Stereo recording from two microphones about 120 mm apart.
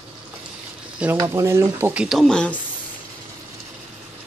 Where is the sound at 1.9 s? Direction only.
5° right (ahead or behind).